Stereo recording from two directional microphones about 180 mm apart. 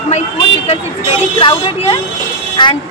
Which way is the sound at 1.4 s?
30° left (ahead or behind).